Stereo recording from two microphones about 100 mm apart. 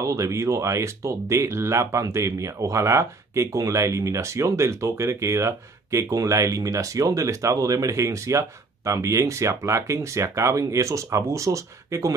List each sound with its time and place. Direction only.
0.0 s speech: 30° right (ahead or behind)